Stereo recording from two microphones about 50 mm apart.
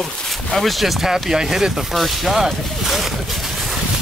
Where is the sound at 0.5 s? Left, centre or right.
Centre.